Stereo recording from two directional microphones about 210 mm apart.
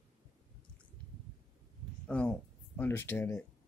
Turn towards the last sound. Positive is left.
turn(degrees=10)  # may be behind; listen again after turning